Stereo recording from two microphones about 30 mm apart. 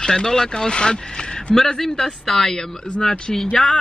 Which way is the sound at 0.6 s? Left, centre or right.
Left.